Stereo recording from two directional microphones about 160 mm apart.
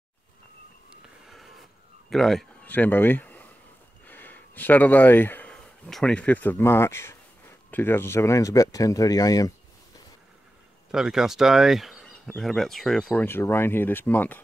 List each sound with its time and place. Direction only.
1.2 s a sound: centre (ahead or behind)
4.0 s speech: 10° left (ahead or behind)
10.9 s speech: 5° right (ahead or behind)